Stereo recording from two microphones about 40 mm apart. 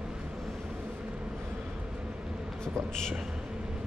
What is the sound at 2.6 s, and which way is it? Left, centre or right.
Speech, centre.